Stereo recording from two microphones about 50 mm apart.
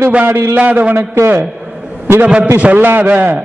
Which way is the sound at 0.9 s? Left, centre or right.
Right.